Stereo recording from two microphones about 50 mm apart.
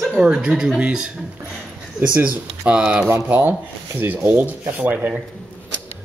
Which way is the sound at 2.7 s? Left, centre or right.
Right.